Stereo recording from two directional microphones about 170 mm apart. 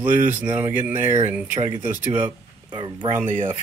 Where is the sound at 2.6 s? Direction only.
25° right (ahead or behind).